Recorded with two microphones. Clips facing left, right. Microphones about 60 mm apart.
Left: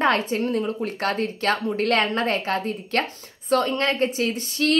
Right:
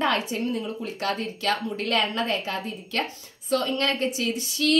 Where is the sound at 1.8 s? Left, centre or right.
Left.